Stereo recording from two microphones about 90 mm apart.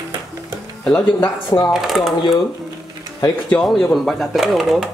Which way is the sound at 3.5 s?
5° left (ahead or behind).